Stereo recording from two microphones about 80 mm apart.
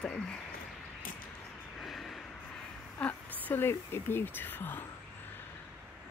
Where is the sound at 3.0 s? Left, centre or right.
Centre.